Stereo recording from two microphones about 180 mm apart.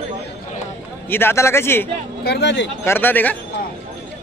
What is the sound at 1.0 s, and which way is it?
Speech, 10° left (ahead or behind).